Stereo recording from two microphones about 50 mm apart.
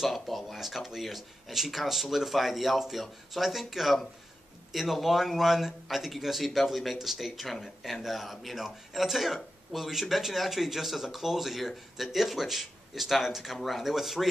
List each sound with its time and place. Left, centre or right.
0.0 s a man's voice: centre